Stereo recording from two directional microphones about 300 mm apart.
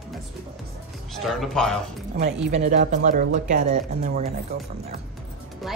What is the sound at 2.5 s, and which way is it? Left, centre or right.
Speech, right.